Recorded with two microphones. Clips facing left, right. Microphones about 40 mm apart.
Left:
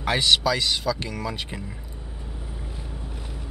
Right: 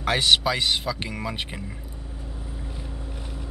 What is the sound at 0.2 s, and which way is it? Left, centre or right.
Speech, right.